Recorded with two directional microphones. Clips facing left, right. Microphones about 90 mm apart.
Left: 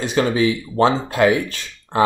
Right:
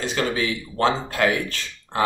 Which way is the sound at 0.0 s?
20° left (ahead or behind).